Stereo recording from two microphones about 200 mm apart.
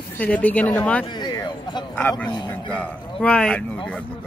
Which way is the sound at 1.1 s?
20° left (ahead or behind).